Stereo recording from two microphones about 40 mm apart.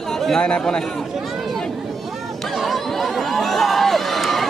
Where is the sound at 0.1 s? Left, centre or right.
Centre.